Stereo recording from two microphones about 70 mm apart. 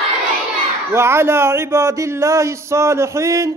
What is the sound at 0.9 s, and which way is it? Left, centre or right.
Speech, right.